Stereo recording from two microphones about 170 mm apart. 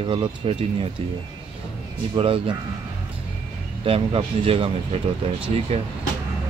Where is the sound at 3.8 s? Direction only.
35° right (ahead or behind).